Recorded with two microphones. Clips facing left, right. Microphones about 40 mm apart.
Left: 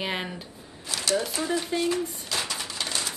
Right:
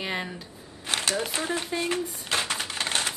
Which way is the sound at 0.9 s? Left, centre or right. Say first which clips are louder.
Left 1 dB; right.